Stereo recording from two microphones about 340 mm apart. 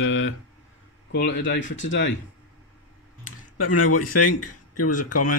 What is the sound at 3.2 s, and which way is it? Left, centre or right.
Speech, left.